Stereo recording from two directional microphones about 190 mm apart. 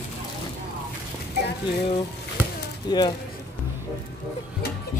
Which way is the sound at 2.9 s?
20° left (ahead or behind).